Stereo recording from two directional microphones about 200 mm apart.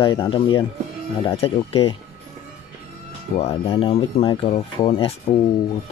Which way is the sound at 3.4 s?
30° left (ahead or behind).